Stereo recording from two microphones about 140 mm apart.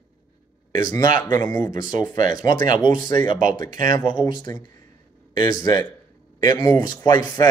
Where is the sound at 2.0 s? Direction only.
70° right (ahead or behind).